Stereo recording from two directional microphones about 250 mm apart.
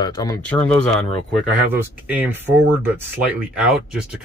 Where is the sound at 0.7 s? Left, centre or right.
Centre.